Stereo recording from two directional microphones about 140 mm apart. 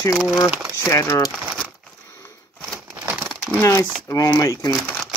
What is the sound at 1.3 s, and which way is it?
Speech, 5° right (ahead or behind).